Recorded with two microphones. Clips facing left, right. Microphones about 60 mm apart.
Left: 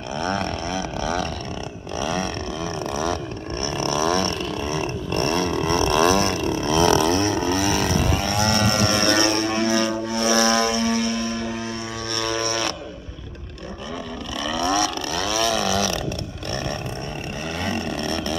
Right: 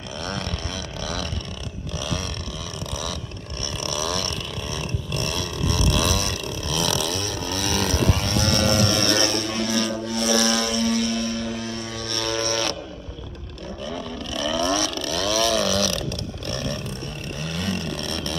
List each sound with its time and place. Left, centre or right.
0.2 s a sound: left
7.7 s vehicle: centre
14.4 s vehicle: centre
17.6 s vehicle: centre